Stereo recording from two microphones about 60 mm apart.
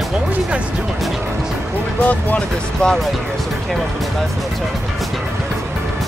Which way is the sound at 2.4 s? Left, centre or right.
Centre.